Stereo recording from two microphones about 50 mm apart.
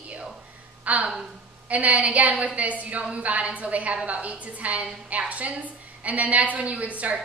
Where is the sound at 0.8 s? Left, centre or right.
Right.